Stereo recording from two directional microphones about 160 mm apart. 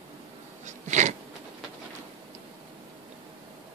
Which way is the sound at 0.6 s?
50° right (ahead or behind).